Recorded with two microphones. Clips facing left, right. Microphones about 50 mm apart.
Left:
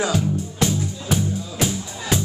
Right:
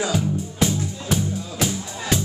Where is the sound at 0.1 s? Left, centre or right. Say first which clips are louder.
Left 1 dB; centre.